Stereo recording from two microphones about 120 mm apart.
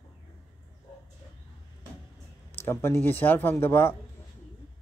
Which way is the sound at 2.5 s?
20° left (ahead or behind).